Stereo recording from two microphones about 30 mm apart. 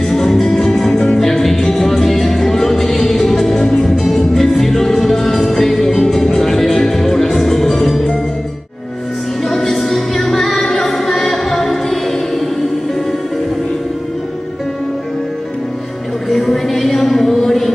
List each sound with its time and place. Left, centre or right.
0.0 s music: centre
3.5 s music: left
3.8 s music: centre
9.5 s music: centre
16.3 s a sound: centre